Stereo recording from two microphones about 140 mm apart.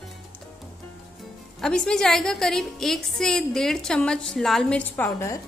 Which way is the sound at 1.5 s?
5° left (ahead or behind).